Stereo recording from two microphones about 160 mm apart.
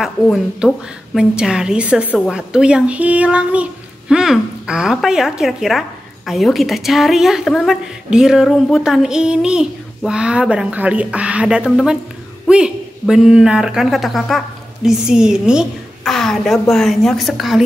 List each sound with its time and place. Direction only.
0.0 s a woman's voice: centre (ahead or behind)